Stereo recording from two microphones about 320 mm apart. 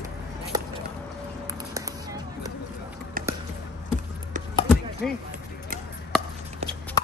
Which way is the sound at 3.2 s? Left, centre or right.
Right.